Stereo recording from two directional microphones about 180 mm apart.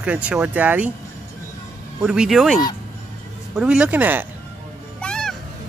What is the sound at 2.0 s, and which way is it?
Speech, 5° right (ahead or behind).